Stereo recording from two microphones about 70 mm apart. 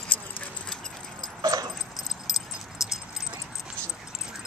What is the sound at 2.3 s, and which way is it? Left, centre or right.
Dog, centre.